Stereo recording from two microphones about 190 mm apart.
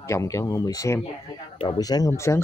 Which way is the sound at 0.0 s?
15° left (ahead or behind).